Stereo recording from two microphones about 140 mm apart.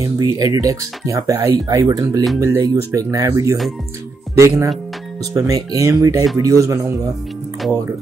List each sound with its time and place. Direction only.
0.0 s speech: 25° right (ahead or behind)